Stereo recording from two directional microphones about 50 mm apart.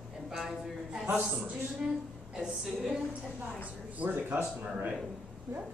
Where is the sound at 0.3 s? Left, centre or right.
Centre.